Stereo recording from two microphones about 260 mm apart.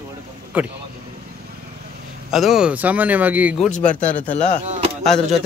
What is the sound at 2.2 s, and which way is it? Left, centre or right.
A man's voice, centre.